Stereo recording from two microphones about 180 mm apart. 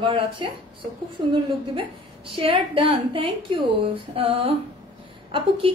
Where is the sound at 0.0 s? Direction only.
30° right (ahead or behind).